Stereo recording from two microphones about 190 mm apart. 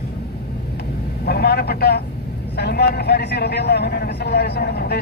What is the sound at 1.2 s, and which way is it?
A man's voice, 55° left (ahead or behind).